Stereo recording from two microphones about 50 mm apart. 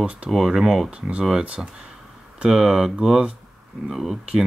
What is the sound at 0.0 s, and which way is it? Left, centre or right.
Speech, right.